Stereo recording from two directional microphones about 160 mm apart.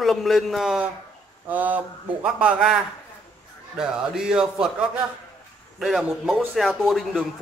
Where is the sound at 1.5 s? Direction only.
10° right (ahead or behind).